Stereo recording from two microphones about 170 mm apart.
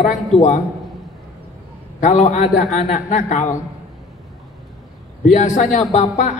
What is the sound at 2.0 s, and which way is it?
Speech, 45° left (ahead or behind).